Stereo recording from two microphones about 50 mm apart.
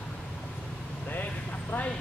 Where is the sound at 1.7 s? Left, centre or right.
Left.